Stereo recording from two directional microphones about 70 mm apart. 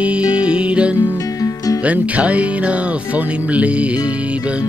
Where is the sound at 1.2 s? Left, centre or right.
Left.